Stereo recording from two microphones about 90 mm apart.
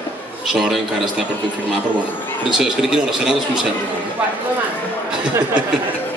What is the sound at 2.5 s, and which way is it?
A man's voice, 5° right (ahead or behind).